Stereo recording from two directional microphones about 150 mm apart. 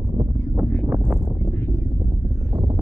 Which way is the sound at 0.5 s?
15° right (ahead or behind).